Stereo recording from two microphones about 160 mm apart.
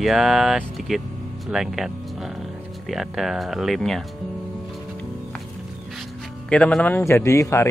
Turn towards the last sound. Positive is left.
turn(degrees=15)  # may be behind; listen again after turning